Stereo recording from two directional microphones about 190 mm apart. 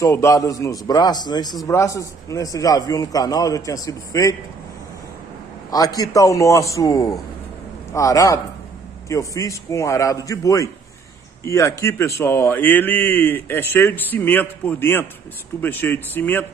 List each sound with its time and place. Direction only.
0.0 s a man's voice: 15° left (ahead or behind)
5.7 s a man's voice: 20° left (ahead or behind)